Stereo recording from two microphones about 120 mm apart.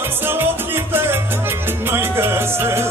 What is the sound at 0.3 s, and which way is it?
Music, 20° right (ahead or behind).